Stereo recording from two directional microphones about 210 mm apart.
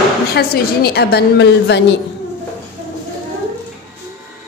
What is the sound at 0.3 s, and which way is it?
A woman's voice, 50° left (ahead or behind).